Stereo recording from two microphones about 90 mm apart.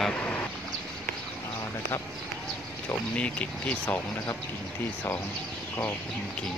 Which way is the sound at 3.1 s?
15° left (ahead or behind).